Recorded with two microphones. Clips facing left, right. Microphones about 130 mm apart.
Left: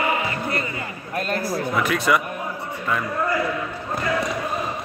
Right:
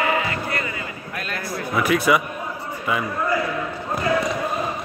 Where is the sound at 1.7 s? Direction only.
5° right (ahead or behind).